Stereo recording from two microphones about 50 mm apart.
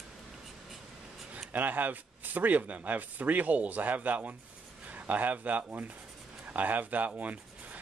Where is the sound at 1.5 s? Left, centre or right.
Right.